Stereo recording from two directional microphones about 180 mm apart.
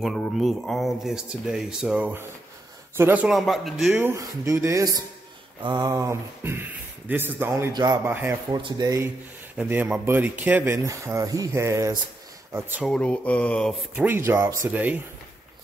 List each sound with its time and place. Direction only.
0.0 s speech: centre (ahead or behind); by 9.1 s 20° right (ahead or behind)
9.6 s speech: 10° right (ahead or behind)
12.8 s mantra: 5° left (ahead or behind)
13.9 s speech: 10° right (ahead or behind)